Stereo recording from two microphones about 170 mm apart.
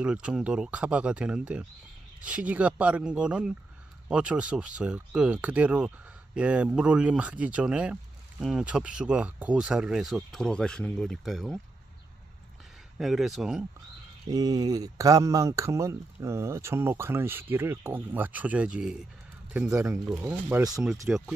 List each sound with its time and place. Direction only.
0.0 s speech: 5° right (ahead or behind)
12.9 s speech: centre (ahead or behind)
14.3 s speech: 20° right (ahead or behind); by 21.2 s 5° right (ahead or behind)